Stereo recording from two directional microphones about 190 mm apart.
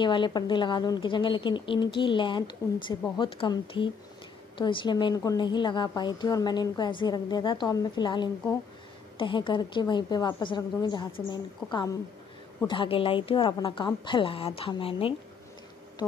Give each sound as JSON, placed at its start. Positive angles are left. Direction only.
{"t": 0.0, "sound": "a woman's voice", "side_deg": 25}